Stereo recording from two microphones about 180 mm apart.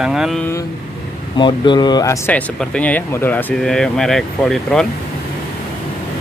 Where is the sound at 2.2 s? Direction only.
5° left (ahead or behind).